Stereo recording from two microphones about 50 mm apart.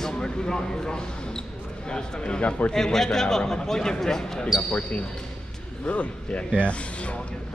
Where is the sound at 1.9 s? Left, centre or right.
Centre.